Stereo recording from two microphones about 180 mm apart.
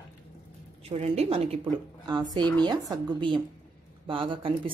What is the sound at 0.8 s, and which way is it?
Speech, 35° right (ahead or behind).